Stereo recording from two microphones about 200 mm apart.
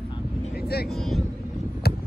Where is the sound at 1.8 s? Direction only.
50° left (ahead or behind).